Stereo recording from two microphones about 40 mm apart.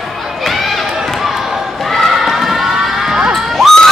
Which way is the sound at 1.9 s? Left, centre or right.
Centre.